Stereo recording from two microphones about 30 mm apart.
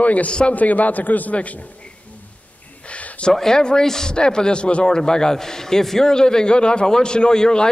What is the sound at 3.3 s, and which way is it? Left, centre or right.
A man's voice, left.